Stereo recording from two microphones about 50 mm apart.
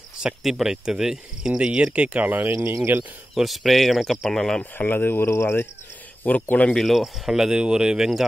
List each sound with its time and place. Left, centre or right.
0.2 s speech: centre
2.1 s speech: right
2.5 s speech: right
3.3 s speech: centre
4.7 s speech: left
5.1 s speech: left
6.2 s speech: left
6.7 s speech: centre
7.2 s speech: centre